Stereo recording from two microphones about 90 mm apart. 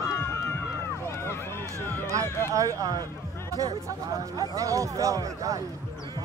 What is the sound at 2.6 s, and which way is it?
Speech, 40° right (ahead or behind).